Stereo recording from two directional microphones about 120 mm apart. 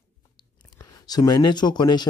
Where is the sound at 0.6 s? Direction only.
30° left (ahead or behind).